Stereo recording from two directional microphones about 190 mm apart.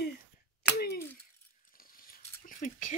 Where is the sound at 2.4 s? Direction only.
45° left (ahead or behind).